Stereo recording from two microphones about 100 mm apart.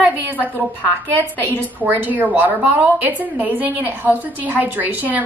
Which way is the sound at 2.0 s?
15° right (ahead or behind).